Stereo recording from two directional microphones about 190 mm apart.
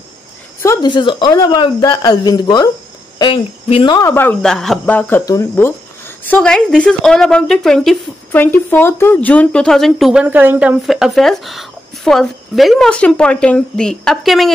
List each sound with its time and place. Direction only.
0.6 s a woman's voice: 20° left (ahead or behind); by 10.8 s 10° right (ahead or behind)
10.9 s speech: centre (ahead or behind)